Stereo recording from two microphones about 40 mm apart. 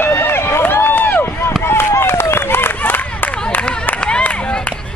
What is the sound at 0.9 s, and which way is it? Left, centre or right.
Run, left.